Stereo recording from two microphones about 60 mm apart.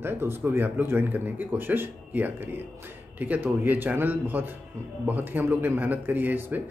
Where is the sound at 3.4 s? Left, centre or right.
Right.